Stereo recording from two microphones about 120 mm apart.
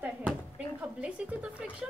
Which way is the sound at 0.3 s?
10° right (ahead or behind).